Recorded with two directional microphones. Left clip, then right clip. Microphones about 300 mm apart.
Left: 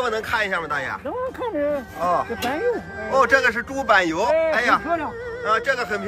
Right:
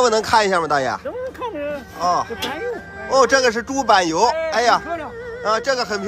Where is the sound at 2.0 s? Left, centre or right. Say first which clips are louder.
Right 3 dB; centre.